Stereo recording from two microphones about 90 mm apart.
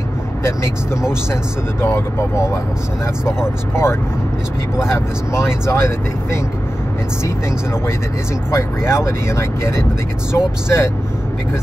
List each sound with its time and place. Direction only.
1.3 s speech: 30° left (ahead or behind)
4.9 s speech: 30° left (ahead or behind)
8.5 s speech: 30° left (ahead or behind)